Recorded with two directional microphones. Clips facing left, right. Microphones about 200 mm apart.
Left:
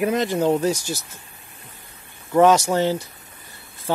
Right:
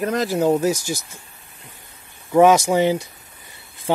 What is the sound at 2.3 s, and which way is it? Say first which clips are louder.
Speech: right 2 dB; 10° right (ahead or behind).